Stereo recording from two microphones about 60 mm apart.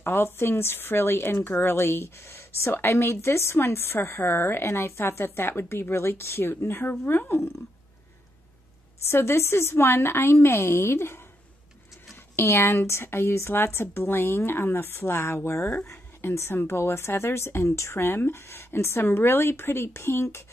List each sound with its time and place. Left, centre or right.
0.0 s speech: left
9.0 s speech: left
12.4 s speech: left